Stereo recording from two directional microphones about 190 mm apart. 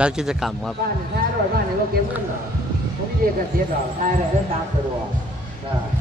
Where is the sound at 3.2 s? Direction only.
50° right (ahead or behind).